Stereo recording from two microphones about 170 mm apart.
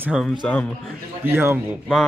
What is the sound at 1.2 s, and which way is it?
Speech, 15° right (ahead or behind).